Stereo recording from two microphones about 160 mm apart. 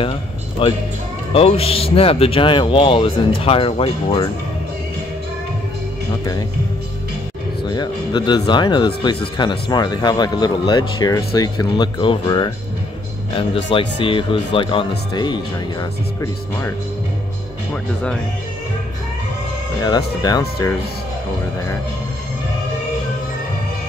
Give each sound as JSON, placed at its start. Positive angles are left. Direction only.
{"t": 0.6, "sound": "speech", "side_deg": 35}
{"t": 7.7, "sound": "speech", "side_deg": 25}
{"t": 19.8, "sound": "speech", "side_deg": 25}